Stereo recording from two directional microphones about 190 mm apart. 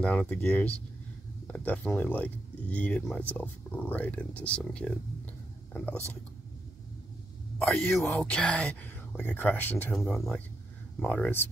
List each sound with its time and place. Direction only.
0.0 s speech: 5° left (ahead or behind)
7.6 s speech: 10° left (ahead or behind)